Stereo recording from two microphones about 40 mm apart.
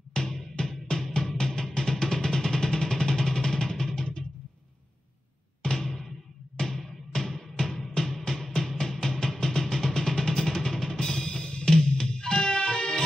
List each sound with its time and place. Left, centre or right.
0.1 s music: centre
5.8 s music: centre